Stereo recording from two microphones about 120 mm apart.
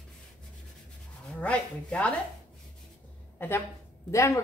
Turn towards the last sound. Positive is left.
turn(degrees=25)  # may be behind; listen again after turning